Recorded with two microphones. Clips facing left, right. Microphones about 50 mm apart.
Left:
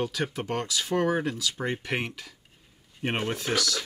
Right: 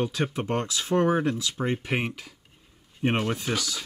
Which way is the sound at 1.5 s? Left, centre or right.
Centre.